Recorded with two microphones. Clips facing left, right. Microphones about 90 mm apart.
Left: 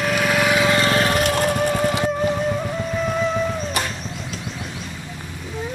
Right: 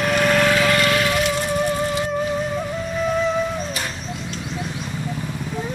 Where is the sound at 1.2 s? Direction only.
60° left (ahead or behind).